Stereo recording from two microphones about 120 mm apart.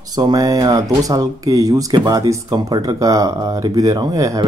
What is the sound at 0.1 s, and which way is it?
Speech, 35° right (ahead or behind).